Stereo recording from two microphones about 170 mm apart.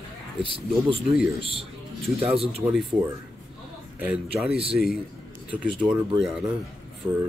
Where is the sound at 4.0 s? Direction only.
5° right (ahead or behind).